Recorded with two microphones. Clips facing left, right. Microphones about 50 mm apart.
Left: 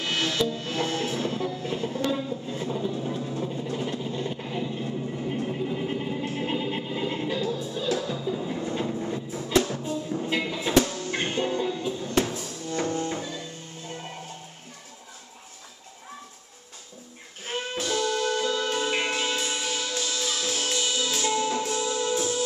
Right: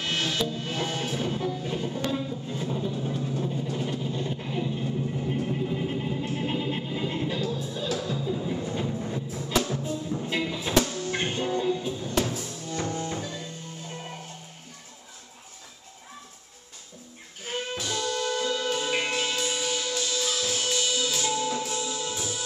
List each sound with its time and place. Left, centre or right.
0.3 s music: centre
2.0 s music: centre
4.0 s vehicle: centre
7.7 s music: centre
17.5 s music: centre
20.7 s music: centre
21.7 s music: left
22.1 s music: centre